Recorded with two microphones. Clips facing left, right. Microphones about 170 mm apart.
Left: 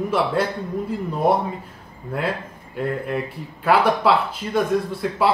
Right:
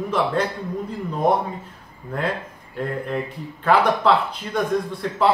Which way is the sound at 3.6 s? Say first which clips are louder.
Even; 5° left (ahead or behind).